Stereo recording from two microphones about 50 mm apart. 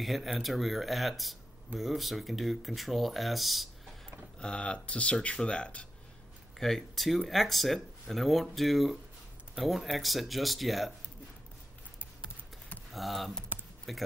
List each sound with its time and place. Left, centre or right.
0.0 s speech: centre
4.4 s speech: centre
6.6 s speech: centre
12.9 s speech: centre